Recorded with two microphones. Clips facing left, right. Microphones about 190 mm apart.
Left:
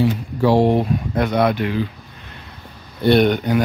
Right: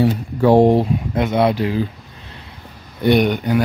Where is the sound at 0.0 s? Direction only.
55° right (ahead or behind).